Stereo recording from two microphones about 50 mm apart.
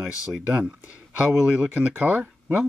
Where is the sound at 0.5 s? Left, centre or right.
Right.